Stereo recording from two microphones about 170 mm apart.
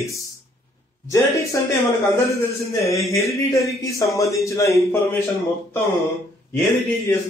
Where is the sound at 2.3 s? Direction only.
20° left (ahead or behind).